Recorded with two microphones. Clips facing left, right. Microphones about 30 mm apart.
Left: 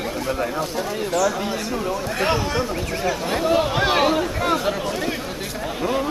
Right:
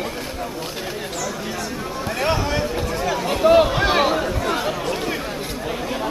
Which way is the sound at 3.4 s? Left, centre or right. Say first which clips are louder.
Right 7 dB; centre.